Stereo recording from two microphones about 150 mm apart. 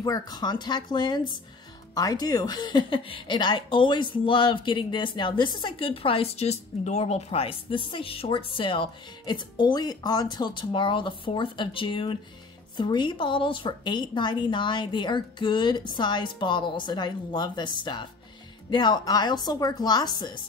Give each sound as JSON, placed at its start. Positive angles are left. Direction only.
{"t": 0.0, "sound": "a woman's voice", "side_deg": 25}